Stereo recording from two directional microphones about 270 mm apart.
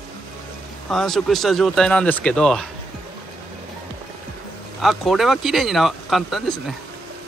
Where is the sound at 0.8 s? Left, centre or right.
Centre.